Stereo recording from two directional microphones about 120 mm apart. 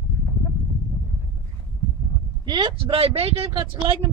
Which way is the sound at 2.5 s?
45° right (ahead or behind).